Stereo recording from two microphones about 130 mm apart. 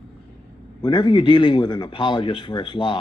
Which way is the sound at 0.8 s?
35° left (ahead or behind).